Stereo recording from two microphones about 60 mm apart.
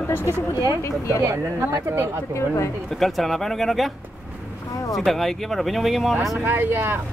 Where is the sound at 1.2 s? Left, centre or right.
Right.